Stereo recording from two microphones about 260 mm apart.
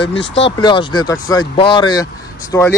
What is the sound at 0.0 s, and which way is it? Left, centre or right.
Speech, left.